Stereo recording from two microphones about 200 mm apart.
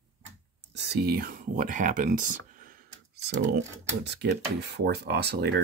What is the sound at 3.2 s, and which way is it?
Speech, 60° right (ahead or behind).